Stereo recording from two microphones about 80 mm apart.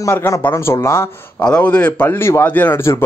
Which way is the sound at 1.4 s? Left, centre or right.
Centre.